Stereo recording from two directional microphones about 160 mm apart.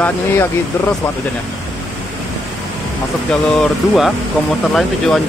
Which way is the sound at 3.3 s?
Centre (ahead or behind).